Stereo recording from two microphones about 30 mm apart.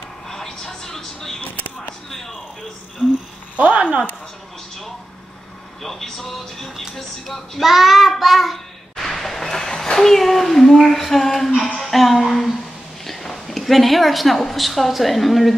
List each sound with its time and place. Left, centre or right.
0.3 s television: centre
3.0 s a sound: centre
3.5 s speech: right
5.8 s speech: centre
7.6 s a woman's voice: centre
8.9 s a sound: centre
9.9 s a woman's voice: centre
13.0 s a sound: centre
14.4 s a woman's voice: centre